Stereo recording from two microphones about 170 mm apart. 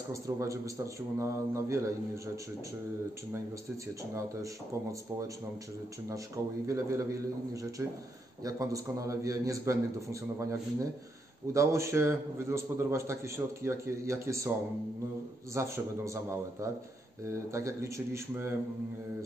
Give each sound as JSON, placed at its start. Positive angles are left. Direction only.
{"t": 0.1, "sound": "a man's voice", "side_deg": -20}
{"t": 6.0, "sound": "a man's voice", "side_deg": -20}
{"t": 8.5, "sound": "a man's voice", "side_deg": -20}
{"t": 15.5, "sound": "a man's voice", "side_deg": -15}